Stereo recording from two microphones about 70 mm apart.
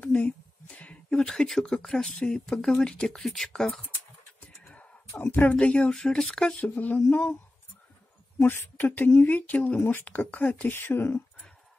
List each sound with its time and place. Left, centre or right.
0.0 s a sound: centre
1.1 s speech: centre
5.2 s speech: left
6.6 s speech: left
8.4 s speech: left